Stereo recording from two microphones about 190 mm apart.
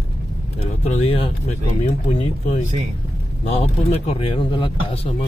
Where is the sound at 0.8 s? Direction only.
35° left (ahead or behind).